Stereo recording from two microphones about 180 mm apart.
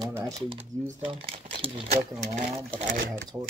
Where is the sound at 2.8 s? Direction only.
45° right (ahead or behind).